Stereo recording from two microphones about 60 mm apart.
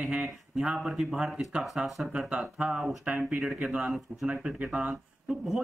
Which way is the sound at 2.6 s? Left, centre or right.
Centre.